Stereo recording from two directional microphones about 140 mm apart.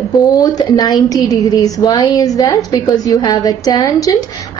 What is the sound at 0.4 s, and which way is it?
A woman's voice, 30° left (ahead or behind).